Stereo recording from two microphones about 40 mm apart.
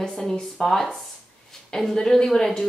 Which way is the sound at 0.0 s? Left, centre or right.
Centre.